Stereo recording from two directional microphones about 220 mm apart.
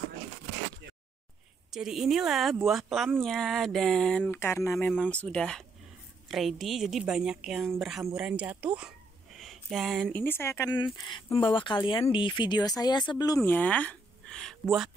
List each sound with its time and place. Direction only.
1.7 s speech: centre (ahead or behind)